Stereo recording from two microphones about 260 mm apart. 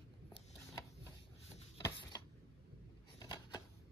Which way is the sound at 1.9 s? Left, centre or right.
Centre.